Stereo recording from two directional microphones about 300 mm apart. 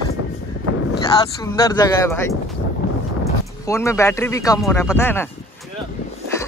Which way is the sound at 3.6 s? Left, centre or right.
Centre.